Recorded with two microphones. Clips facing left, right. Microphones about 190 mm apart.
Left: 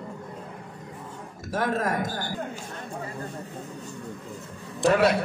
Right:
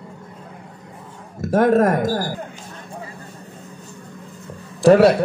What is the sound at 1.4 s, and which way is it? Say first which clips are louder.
Speech: right 12 dB; 50° right (ahead or behind).